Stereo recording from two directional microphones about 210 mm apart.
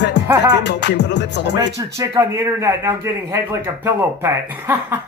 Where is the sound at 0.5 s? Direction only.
55° left (ahead or behind).